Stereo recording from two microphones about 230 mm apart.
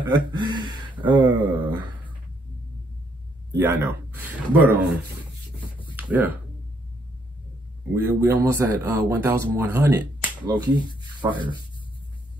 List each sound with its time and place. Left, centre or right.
0.0 s speech: centre
3.5 s speech: centre
5.9 s speech: centre
7.9 s speech: centre